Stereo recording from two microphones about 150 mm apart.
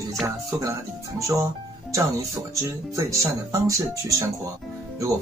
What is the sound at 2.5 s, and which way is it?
Speech, 20° right (ahead or behind).